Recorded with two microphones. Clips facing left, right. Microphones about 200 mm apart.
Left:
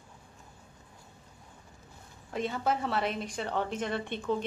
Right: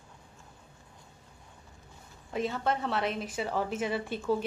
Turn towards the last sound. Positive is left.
turn(degrees=-5)  # may be behind; listen again after turning